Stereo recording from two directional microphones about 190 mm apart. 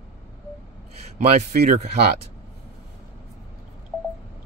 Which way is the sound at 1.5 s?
40° right (ahead or behind).